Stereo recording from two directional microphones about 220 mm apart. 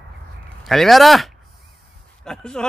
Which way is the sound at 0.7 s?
Centre (ahead or behind).